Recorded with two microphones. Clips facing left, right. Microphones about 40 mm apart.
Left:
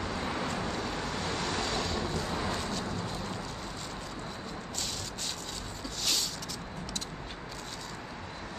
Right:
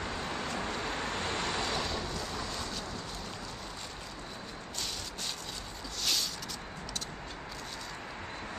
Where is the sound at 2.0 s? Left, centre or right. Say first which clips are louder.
Left 4 dB; centre.